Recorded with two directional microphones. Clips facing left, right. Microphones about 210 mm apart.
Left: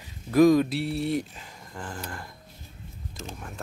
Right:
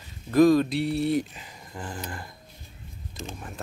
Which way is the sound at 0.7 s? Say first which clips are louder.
Right 3 dB; centre (ahead or behind).